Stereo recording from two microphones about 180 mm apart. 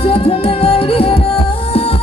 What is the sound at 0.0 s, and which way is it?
Music, 30° left (ahead or behind).